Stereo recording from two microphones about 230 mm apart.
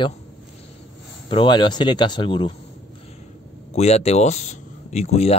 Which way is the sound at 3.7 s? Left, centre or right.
Left.